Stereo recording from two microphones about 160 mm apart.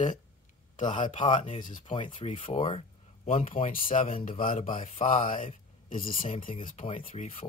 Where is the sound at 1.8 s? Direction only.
30° left (ahead or behind).